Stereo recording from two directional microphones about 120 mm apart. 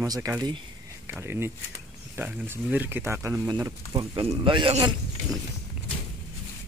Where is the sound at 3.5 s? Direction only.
35° right (ahead or behind).